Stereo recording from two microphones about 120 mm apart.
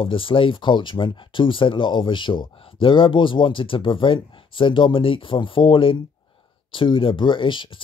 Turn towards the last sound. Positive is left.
turn(degrees=45)  # may be behind; listen again after turning